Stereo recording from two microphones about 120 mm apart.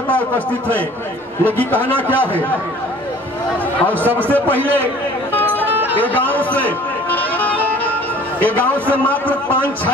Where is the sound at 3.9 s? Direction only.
15° right (ahead or behind).